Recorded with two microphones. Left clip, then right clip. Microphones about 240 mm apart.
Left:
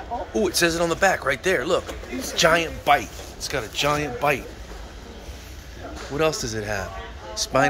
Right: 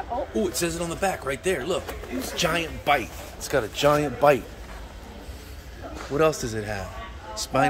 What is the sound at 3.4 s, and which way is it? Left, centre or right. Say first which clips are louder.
Speech: right 2 dB; right.